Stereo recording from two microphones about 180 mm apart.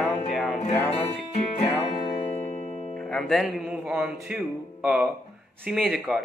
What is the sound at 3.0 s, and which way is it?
Speech, 5° left (ahead or behind).